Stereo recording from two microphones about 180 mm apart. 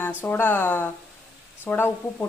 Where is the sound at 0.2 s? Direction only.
10° left (ahead or behind).